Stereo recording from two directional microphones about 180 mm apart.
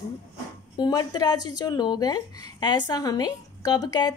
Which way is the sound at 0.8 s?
20° left (ahead or behind).